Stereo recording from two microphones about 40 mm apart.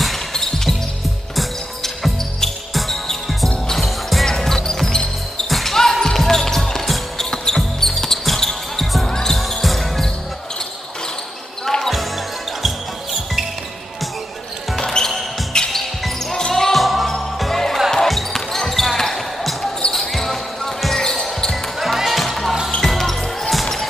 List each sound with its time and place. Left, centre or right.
0.0 s basketball bounce: centre
1.3 s music: centre
5.5 s basketball bounce: centre
9.4 s basketball bounce: centre
11.6 s basketball bounce: centre
14.8 s basketball bounce: centre
15.7 s music: centre
18.0 s basketball bounce: centre
21.7 s music: centre
22.8 s basketball bounce: centre